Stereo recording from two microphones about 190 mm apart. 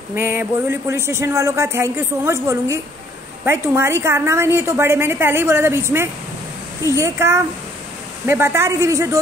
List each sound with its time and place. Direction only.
0.1 s speech: 10° right (ahead or behind)